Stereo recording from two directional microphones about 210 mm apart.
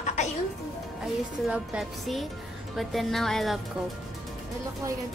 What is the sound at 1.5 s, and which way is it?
A woman's voice, 5° right (ahead or behind).